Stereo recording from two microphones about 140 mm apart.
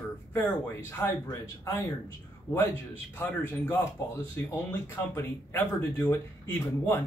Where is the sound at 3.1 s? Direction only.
15° left (ahead or behind).